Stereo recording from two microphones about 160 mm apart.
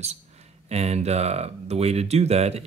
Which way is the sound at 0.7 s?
40° right (ahead or behind).